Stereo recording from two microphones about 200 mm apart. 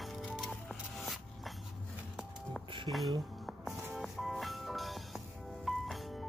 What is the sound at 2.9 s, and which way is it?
Speech, 25° right (ahead or behind).